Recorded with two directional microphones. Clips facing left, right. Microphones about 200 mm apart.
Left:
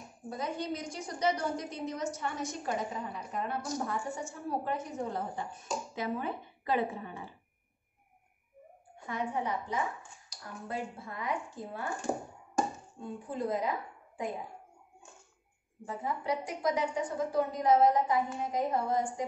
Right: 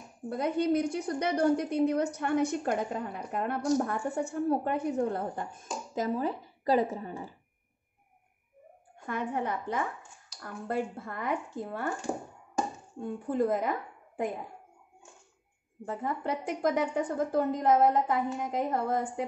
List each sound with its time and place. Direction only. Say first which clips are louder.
0.3 s a woman's voice: right 8 dB; 60° right (ahead or behind); by 7.3 s 40° right (ahead or behind)
8.9 s a woman's voice: right 2 dB; 50° right (ahead or behind)
13.3 s a woman's voice: right 5 dB; 55° right (ahead or behind)
15.8 s a woman's voice: right 3 dB; 55° right (ahead or behind)